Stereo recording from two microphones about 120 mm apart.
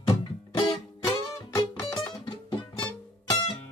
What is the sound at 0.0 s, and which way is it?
Music, 35° left (ahead or behind).